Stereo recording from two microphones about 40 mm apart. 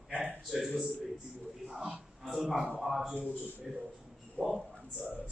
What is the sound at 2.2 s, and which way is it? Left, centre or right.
A man's voice, centre.